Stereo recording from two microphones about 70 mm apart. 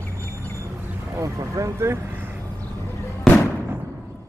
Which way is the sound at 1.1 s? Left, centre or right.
Right.